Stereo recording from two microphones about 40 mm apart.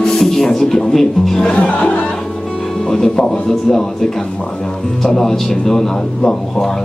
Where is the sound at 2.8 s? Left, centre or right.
Centre.